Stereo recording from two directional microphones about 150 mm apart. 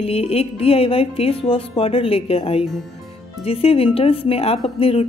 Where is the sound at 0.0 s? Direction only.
40° left (ahead or behind).